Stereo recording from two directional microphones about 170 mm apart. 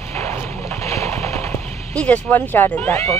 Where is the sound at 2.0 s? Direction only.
10° left (ahead or behind).